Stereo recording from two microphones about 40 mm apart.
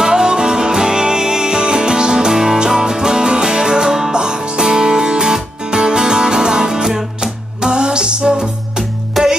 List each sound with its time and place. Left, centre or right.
0.0 s music: centre
9.2 s music: centre